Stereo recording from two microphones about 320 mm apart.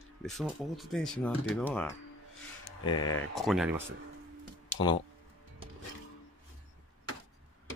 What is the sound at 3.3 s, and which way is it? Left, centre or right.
Speech, centre.